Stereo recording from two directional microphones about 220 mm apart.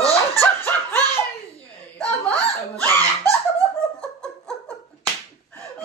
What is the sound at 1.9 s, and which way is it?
Giggle, 5° left (ahead or behind).